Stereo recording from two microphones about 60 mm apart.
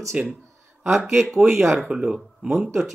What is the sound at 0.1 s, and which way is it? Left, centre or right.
Speech, right.